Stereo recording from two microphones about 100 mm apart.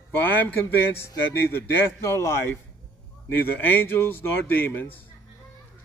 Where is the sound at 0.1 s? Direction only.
20° left (ahead or behind).